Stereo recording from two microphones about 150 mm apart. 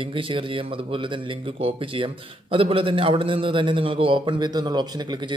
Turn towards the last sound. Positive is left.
turn(degrees=-30)  # may be behind; listen again after turning